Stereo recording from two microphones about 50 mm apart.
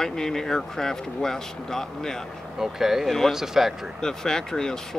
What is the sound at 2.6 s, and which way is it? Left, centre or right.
Speech, centre.